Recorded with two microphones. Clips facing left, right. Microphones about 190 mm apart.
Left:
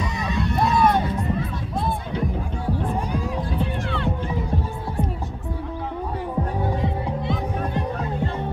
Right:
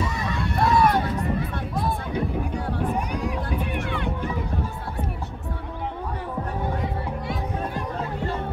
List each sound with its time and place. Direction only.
0.0 s music: 20° left (ahead or behind)
3.5 s music: 15° right (ahead or behind)
6.8 s music: 25° left (ahead or behind)